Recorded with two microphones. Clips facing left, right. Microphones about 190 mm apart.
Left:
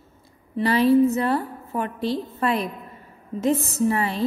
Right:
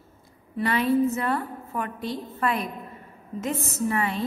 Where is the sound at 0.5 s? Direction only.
35° left (ahead or behind).